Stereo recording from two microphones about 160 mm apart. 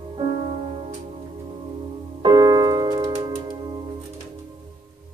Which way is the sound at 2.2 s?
30° right (ahead or behind).